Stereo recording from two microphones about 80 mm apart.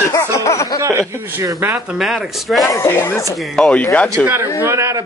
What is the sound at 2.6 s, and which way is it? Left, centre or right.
Speech, left.